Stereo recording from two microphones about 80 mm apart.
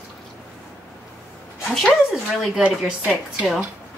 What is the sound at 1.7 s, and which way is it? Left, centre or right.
Speech, centre.